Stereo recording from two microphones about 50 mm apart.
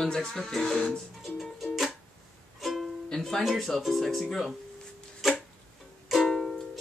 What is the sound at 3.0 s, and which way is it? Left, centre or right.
Speech, centre.